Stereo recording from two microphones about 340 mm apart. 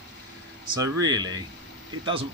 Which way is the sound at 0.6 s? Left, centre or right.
Centre.